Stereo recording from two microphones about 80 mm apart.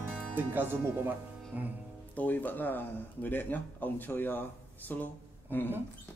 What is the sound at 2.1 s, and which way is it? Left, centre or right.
Speech, left.